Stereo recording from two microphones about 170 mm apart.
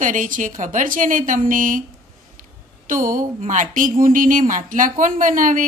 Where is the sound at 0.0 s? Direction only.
50° right (ahead or behind).